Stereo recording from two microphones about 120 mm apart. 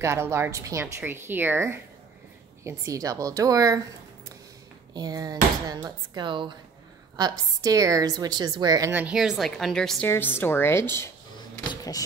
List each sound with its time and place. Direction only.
0.0 s a woman's voice: 20° right (ahead or behind)
4.9 s a woman's voice: 35° right (ahead or behind)
8.9 s a woman's voice: 10° right (ahead or behind)
10.0 s a woman's voice: 20° left (ahead or behind)
11.7 s a sound: 30° left (ahead or behind)